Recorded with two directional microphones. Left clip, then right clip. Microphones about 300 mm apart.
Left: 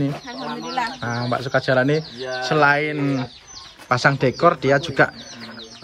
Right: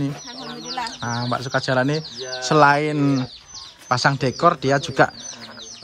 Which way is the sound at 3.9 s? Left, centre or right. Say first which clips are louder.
Left 2 dB; centre.